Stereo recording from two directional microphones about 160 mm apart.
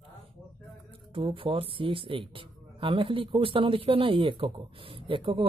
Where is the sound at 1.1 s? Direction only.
35° right (ahead or behind).